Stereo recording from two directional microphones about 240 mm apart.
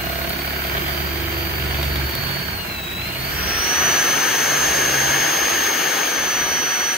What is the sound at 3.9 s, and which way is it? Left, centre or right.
Jet engine, centre.